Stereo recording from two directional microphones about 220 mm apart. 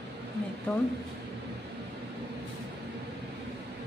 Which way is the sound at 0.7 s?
10° left (ahead or behind).